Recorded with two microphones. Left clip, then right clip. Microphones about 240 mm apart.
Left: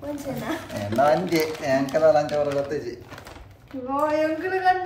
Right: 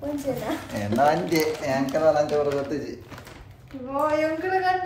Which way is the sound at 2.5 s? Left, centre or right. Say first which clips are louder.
Left 1 dB; centre.